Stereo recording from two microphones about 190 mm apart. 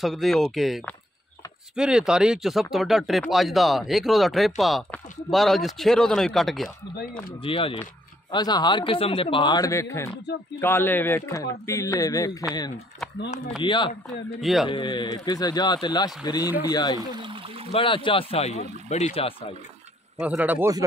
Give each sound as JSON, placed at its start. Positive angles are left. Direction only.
{"t": 0.0, "sound": "speech", "side_deg": 0}
{"t": 7.4, "sound": "speech", "side_deg": 30}
{"t": 14.4, "sound": "speech", "side_deg": 0}
{"t": 14.7, "sound": "speech", "side_deg": 25}
{"t": 17.1, "sound": "speech", "side_deg": -25}
{"t": 17.6, "sound": "speech", "side_deg": 30}
{"t": 20.2, "sound": "a man's voice", "side_deg": -5}